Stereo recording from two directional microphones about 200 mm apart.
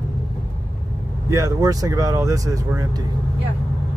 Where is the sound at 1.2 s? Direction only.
15° right (ahead or behind).